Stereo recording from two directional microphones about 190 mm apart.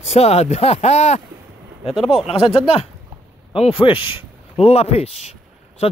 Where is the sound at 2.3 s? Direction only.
30° left (ahead or behind).